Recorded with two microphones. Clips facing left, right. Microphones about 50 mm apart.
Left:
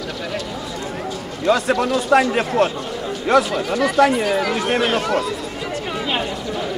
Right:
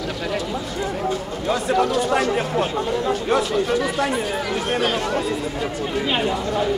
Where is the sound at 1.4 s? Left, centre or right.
Left.